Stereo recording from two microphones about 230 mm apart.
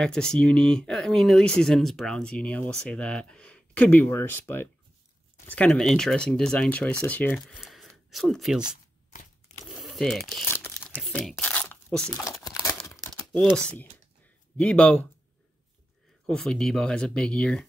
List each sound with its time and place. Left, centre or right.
0.0 s speech: centre
8.6 s shuffling cards: left
9.8 s tearing: centre
12.1 s speech: centre
12.4 s crumpling: centre
13.4 s speech: centre
16.3 s speech: centre